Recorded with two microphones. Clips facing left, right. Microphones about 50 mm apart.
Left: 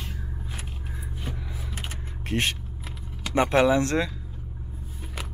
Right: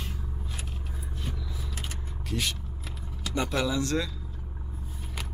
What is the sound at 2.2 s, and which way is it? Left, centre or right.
Vehicle, left.